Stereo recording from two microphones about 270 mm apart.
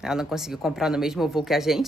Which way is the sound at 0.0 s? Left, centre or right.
Centre.